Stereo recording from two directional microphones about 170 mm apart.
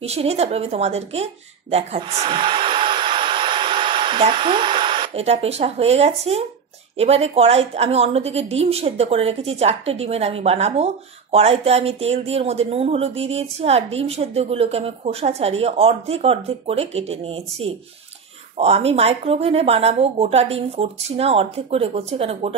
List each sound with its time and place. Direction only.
0.0 s a woman's voice: 40° right (ahead or behind)